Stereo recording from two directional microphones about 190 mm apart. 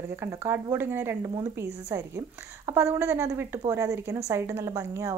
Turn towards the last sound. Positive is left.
turn(degrees=-15)  # may be behind; listen again after turning